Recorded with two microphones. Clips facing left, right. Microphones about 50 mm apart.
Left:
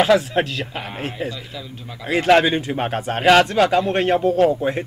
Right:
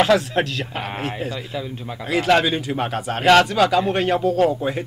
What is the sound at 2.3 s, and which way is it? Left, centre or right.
Speech, left.